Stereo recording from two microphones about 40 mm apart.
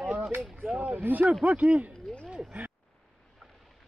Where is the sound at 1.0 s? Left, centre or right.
Right.